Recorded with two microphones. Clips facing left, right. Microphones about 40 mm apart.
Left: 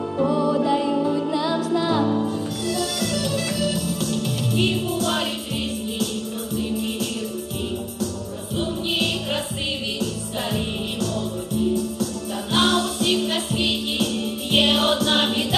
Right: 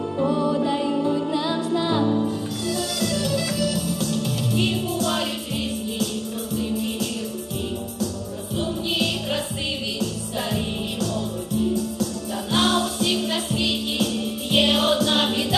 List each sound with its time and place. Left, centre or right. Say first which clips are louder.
0.8 s music: left 1 dB; centre
3.0 s music: even; left
4.5 s music: left 2 dB; left
6.5 s music: even; left
8.9 s music: left 1 dB; left
11.7 s music: left 1 dB; left